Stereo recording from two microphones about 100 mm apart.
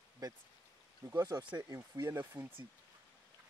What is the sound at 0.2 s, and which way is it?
Speech, 40° right (ahead or behind).